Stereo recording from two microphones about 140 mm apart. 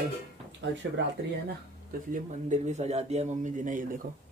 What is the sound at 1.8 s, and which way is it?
Speech, 65° right (ahead or behind).